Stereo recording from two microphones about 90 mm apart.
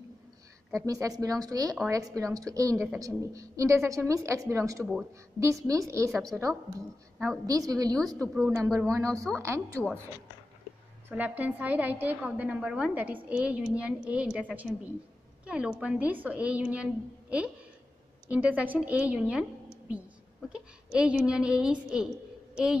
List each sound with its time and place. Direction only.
0.7 s speech: 40° right (ahead or behind)
11.1 s a woman's voice: 20° right (ahead or behind)
15.4 s a woman's voice: 10° right (ahead or behind)
20.4 s a sound: 10° right (ahead or behind)
21.3 s a woman's voice: 10° right (ahead or behind)